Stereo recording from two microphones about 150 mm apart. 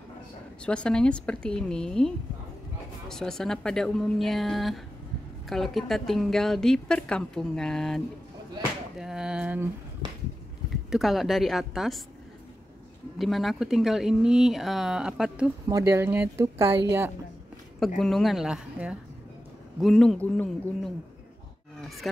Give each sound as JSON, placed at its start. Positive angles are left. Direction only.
{"t": 0.7, "sound": "a woman's voice", "side_deg": 5}
{"t": 8.9, "sound": "a sound", "side_deg": -5}
{"t": 10.9, "sound": "a woman's voice", "side_deg": 0}
{"t": 13.2, "sound": "a woman's voice", "side_deg": 0}
{"t": 15.7, "sound": "speech", "side_deg": -20}
{"t": 17.7, "sound": "a woman's voice", "side_deg": 0}
{"t": 20.2, "sound": "speech", "side_deg": 10}
{"t": 22.0, "sound": "a woman's voice", "side_deg": 0}